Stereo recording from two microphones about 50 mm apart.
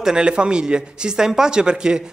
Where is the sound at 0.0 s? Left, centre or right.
Centre.